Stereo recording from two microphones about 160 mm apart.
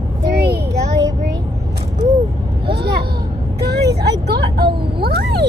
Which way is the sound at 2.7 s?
85° right.